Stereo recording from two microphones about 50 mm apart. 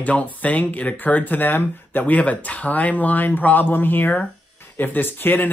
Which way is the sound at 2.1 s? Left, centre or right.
Left.